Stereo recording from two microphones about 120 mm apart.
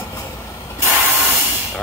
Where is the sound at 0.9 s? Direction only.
20° right (ahead or behind).